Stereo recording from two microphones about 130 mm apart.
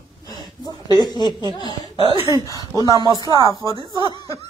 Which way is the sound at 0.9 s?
30° left (ahead or behind).